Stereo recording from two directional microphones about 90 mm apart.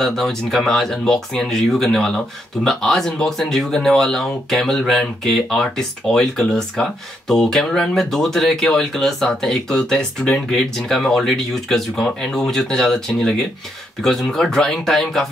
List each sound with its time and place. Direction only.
0.0 s speech: 5° left (ahead or behind)